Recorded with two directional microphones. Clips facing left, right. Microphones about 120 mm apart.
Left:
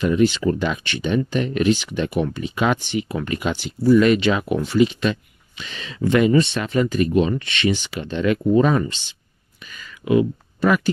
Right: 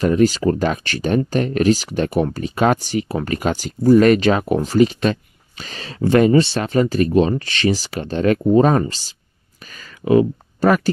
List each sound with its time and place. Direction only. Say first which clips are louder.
0.0 s speech: right 2 dB; 40° right (ahead or behind)